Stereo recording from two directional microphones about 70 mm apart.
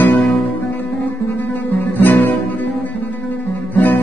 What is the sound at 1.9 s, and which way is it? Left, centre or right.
Guitar, left.